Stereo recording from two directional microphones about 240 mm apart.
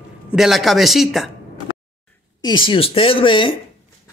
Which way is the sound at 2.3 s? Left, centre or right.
Centre.